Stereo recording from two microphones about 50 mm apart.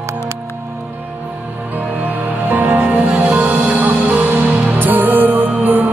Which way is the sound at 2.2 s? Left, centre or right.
Right.